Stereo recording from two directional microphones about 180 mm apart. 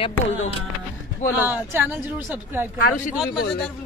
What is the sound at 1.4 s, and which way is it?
A woman's voice, 10° right (ahead or behind).